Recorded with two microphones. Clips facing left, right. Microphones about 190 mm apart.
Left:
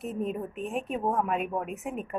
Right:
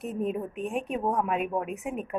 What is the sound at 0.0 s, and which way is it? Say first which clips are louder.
A woman's voice: right 2 dB; centre (ahead or behind).